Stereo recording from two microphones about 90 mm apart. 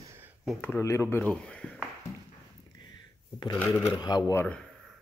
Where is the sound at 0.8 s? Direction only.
30° left (ahead or behind).